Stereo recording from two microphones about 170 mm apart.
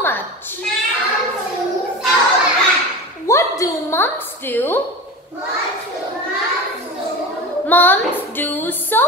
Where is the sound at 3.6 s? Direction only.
15° left (ahead or behind).